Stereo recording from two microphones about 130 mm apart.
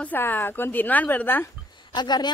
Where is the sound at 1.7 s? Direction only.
35° left (ahead or behind).